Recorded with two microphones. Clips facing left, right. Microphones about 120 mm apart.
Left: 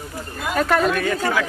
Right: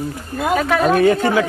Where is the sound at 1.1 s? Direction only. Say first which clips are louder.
Right 5 dB; 25° right (ahead or behind).